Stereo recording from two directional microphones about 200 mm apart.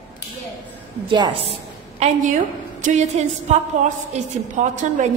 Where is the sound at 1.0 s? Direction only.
25° right (ahead or behind).